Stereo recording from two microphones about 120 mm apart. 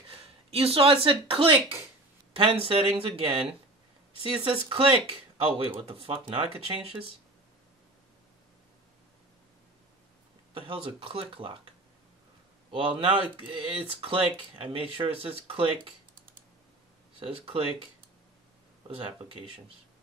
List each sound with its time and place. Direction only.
0.1 s speech: 55° right (ahead or behind)
10.5 s speech: 45° right (ahead or behind)
12.7 s speech: 45° right (ahead or behind)